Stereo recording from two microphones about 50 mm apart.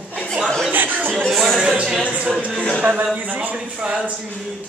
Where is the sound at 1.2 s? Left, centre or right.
Centre.